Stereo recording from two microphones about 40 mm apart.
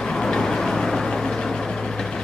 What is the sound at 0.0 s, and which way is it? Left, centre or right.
Vehicle, centre.